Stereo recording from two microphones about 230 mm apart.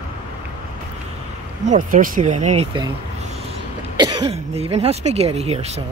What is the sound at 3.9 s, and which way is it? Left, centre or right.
Speech, centre.